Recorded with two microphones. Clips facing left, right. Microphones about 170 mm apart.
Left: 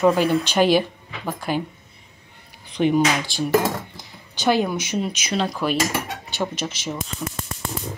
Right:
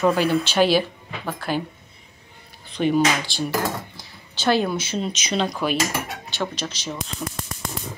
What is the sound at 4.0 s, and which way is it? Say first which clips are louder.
Speech: left 2 dB; 15° left (ahead or behind).